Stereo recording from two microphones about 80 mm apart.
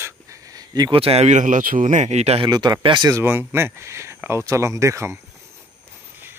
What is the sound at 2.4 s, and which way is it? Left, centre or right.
Speech, right.